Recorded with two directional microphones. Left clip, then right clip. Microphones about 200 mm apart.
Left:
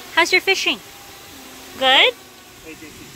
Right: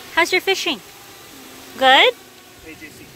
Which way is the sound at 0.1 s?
5° right (ahead or behind).